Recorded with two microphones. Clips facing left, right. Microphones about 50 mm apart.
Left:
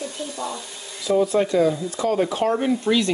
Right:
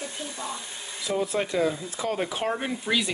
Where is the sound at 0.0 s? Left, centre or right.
Right.